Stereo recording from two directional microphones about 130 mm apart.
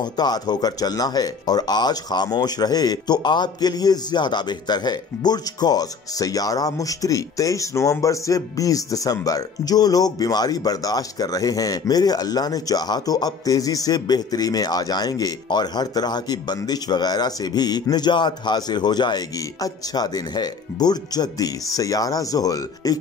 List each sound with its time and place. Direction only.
0.0 s speech: 30° left (ahead or behind)